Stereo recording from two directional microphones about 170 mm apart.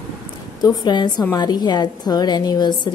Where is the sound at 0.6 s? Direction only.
25° left (ahead or behind).